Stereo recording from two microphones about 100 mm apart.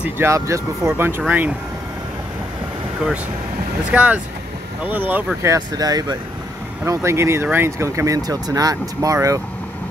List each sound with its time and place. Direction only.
0.2 s speech: 25° right (ahead or behind)
3.9 s speech: 15° right (ahead or behind)
5.4 s speech: 35° right (ahead or behind)
6.9 s speech: 25° right (ahead or behind)